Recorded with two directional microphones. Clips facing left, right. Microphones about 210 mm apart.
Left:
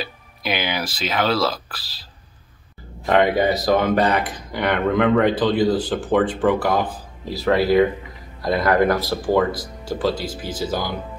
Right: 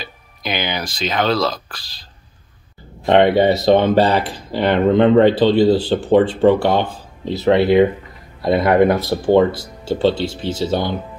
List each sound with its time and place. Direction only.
0.0 s speech: 5° left (ahead or behind)
3.1 s speech: 30° right (ahead or behind)